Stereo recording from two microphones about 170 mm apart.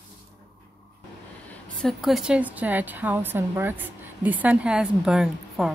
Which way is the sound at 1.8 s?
Centre (ahead or behind).